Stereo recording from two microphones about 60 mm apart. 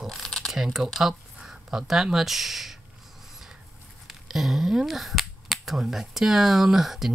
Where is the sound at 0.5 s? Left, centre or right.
Centre.